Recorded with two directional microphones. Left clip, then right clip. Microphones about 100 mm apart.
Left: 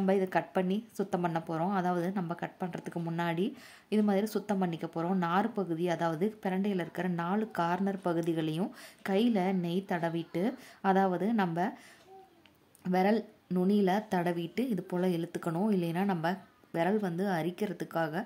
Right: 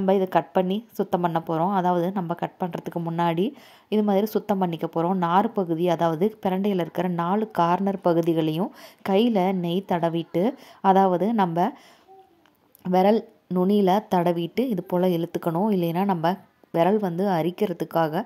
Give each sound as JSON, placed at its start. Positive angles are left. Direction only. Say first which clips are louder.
{"t": 0.0, "sound": "a woman's voice", "louder": "right 8 dB", "side_deg": -50}
{"t": 12.8, "sound": "speech", "louder": "right 9 dB", "side_deg": -55}